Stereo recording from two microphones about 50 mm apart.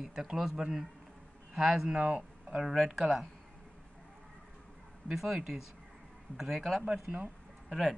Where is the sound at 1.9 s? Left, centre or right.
Right.